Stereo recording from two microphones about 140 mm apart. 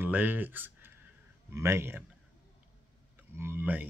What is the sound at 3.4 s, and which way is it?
Speech, 15° right (ahead or behind).